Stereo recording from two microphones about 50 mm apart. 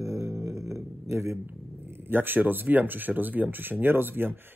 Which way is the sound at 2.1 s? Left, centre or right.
Right.